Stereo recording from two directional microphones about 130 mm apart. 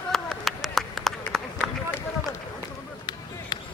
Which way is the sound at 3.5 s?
35° left (ahead or behind).